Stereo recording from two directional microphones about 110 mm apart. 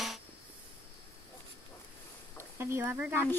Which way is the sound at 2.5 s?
25° right (ahead or behind).